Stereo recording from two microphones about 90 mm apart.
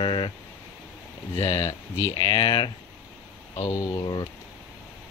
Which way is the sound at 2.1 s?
55° left (ahead or behind).